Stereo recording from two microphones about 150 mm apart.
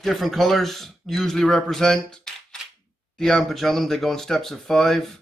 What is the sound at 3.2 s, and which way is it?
Speech, 5° left (ahead or behind).